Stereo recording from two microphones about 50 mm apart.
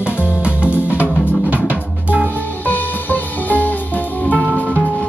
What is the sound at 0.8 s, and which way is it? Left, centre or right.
Music, left.